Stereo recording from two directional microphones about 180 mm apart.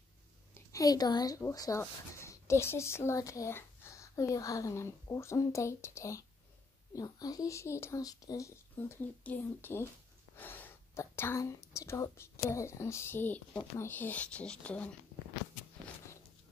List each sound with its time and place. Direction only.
0.6 s speech: 20° left (ahead or behind)